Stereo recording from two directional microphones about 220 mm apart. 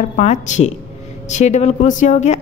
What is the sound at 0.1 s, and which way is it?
A man's voice, 30° left (ahead or behind).